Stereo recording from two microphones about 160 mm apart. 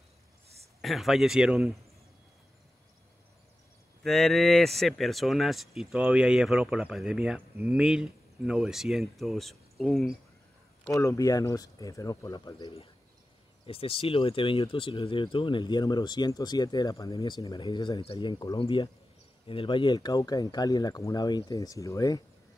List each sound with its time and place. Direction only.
0.7 s speech: centre (ahead or behind)
4.0 s speech: centre (ahead or behind)
10.9 s speech: 20° left (ahead or behind)